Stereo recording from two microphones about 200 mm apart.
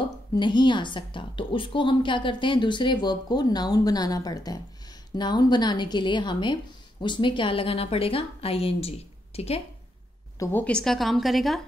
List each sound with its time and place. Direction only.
0.4 s a woman's voice: 25° left (ahead or behind)
10.4 s a woman's voice: 10° left (ahead or behind)